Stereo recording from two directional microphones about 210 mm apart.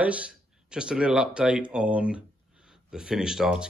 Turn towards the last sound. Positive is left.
turn(degrees=0)  # may be behind; listen again after turning